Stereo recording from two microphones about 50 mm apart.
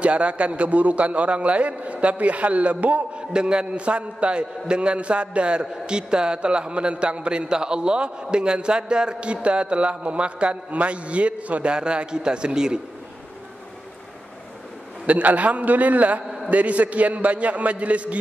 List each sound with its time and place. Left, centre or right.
0.0 s a man's voice: right
3.2 s a man's voice: centre
15.0 s a man's voice: right